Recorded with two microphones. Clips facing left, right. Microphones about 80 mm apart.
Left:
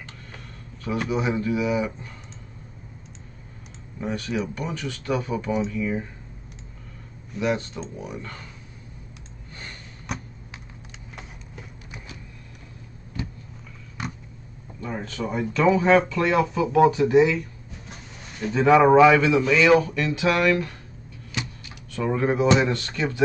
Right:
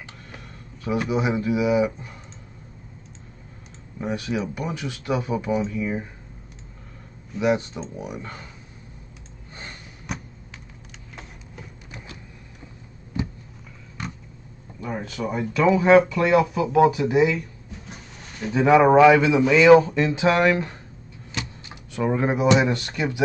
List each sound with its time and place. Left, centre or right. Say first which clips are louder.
0.8 s speech: right 2 dB; centre
4.0 s speech: right 1 dB; centre
7.3 s speech: right 3 dB; centre
10.1 s a sound: even; centre
13.2 s a sound: right 5 dB; right
14.8 s speech: right 1 dB; centre
18.5 s speech: even; centre